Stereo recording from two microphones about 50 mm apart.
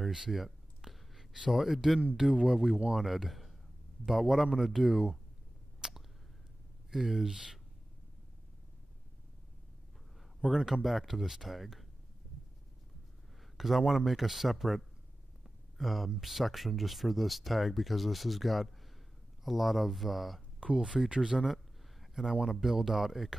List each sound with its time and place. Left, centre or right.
0.1 s a sound: centre
2.1 s a man's voice: centre
5.8 s a sound: centre
6.9 s speech: centre
10.4 s speech: centre
13.6 s speech: centre
15.8 s speech: centre
20.6 s a man's voice: centre